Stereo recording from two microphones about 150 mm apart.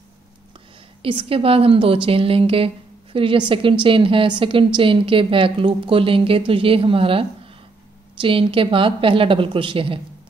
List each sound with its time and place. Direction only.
1.0 s a woman's voice: 35° right (ahead or behind)